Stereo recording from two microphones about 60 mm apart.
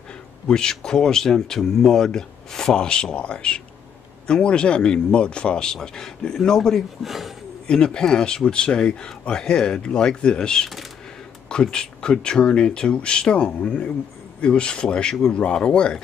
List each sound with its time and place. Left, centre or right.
0.5 s speech: centre
7.0 s speech: centre
7.6 s speech: centre